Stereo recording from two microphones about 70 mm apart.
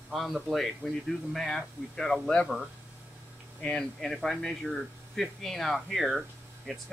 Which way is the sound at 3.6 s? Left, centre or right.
Centre.